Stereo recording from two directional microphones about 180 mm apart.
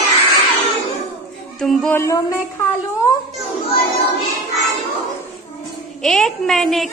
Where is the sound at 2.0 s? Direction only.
15° left (ahead or behind).